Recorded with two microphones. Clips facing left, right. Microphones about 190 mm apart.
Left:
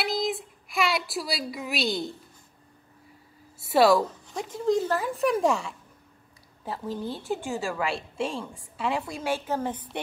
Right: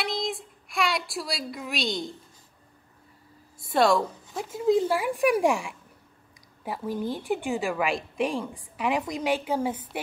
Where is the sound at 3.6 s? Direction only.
5° left (ahead or behind).